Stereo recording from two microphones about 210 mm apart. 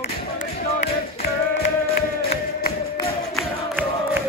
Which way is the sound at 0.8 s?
50° left (ahead or behind).